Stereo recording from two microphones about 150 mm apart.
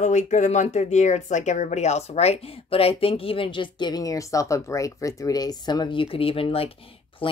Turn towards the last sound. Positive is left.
turn(degrees=40)  # may be behind; listen again after turning